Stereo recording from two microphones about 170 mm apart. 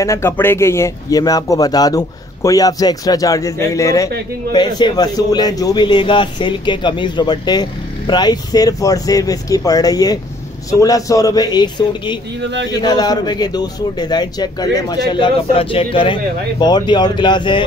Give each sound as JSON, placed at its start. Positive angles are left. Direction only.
{"t": 0.0, "sound": "speech", "side_deg": 15}
{"t": 12.4, "sound": "speech", "side_deg": -90}
{"t": 12.7, "sound": "speech", "side_deg": 25}